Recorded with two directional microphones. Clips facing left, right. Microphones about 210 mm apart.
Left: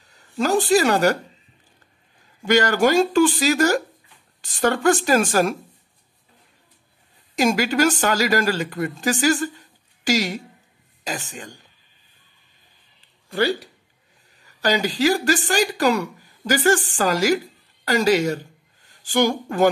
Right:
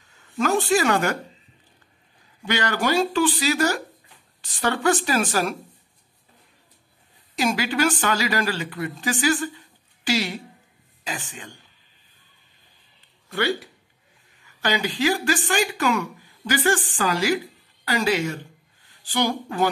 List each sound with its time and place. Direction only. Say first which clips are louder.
0.0 s a sound: left 2 dB; 35° left (ahead or behind)
0.4 s a woman's voice: left 3 dB; 35° left (ahead or behind)
2.4 s speech: left 7 dB; 45° left (ahead or behind)
7.3 s a woman's voice: left 4 dB; 45° left (ahead or behind)
14.4 s a woman's voice: left 4 dB; 40° left (ahead or behind)